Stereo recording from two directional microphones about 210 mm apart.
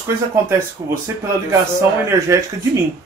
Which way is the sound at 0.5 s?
10° right (ahead or behind).